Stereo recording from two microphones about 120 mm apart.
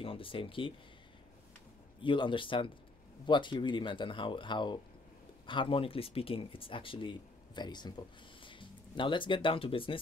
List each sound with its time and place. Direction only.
0.0 s speech: 50° left (ahead or behind)
2.0 s a man's voice: 45° left (ahead or behind)